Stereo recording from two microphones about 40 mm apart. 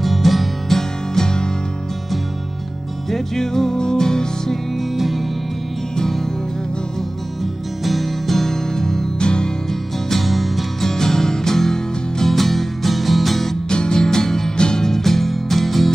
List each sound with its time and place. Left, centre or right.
0.0 s music: centre
3.1 s music: centre
4.7 s music: centre
5.9 s music: centre
7.8 s music: centre
10.9 s music: centre
13.7 s music: centre
14.9 s music: centre